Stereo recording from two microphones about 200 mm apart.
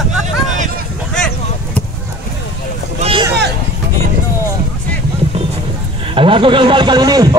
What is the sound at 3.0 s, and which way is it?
Vehicle, 25° right (ahead or behind).